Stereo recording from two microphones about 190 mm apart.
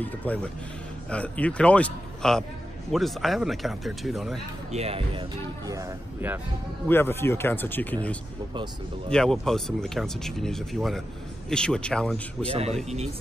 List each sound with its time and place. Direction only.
0.0 s a man's voice: 10° left (ahead or behind)
4.7 s speech: 30° right (ahead or behind)
5.7 s speech: 15° right (ahead or behind)
6.9 s a man's voice: 10° left (ahead or behind)
12.5 s speech: 35° right (ahead or behind)